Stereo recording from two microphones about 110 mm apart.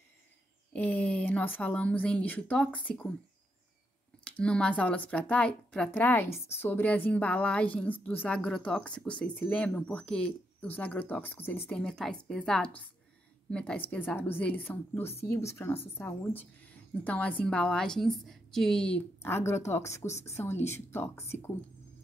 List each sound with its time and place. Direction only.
0.7 s speech: 15° left (ahead or behind)
4.2 s speech: 10° left (ahead or behind)
11.7 s a woman's voice: 5° left (ahead or behind)
19.2 s speech: 25° left (ahead or behind)